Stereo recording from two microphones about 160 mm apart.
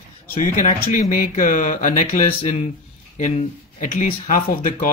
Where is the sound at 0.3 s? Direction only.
55° left (ahead or behind).